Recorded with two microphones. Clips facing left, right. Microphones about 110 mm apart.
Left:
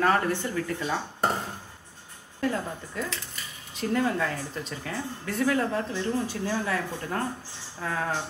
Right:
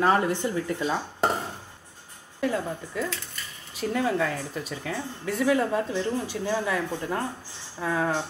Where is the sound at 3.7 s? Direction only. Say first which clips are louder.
Even; 5° right (ahead or behind).